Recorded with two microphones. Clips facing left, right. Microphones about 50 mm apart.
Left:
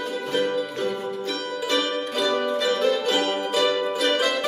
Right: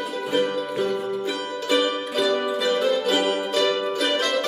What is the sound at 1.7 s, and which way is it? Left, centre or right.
Music, centre.